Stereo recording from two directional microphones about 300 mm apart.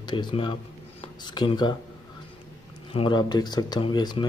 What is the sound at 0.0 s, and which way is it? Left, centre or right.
Speech, centre.